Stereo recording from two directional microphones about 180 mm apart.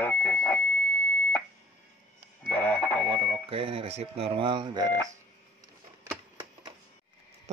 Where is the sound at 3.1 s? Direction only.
30° right (ahead or behind).